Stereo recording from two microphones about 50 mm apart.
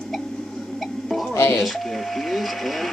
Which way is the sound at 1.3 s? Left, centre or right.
Left.